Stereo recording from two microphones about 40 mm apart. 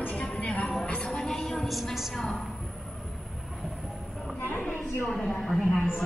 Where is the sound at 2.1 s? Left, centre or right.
Centre.